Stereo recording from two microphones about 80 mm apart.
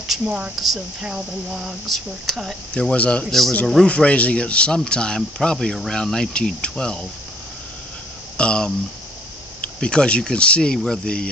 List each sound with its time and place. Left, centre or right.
0.6 s speech: centre
2.7 s speech: centre
3.3 s speech: centre
8.4 s speech: centre
9.8 s speech: centre